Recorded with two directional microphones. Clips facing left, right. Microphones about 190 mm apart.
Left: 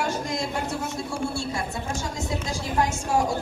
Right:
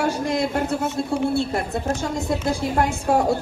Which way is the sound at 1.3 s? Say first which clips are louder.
Right 7 dB; 60° right (ahead or behind).